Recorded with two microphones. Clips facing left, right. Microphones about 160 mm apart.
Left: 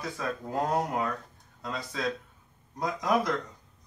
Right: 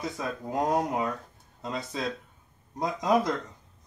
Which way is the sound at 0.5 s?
15° right (ahead or behind).